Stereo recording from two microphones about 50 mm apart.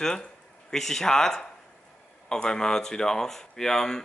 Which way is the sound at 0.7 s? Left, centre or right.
Centre.